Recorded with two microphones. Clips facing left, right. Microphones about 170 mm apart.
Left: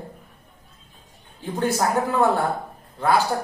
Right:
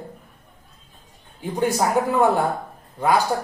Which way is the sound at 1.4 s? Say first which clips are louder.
Right 2 dB; 15° right (ahead or behind).